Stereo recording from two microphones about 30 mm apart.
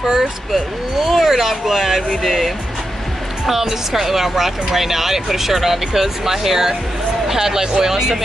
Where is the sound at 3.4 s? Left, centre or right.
Centre.